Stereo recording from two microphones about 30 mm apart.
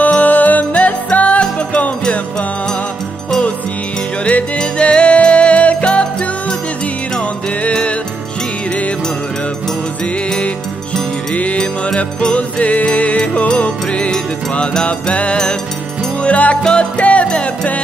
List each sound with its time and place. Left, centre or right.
0.2 s music: left
4.2 s music: left
4.6 s music: left
12.3 s music: left
14.9 s music: left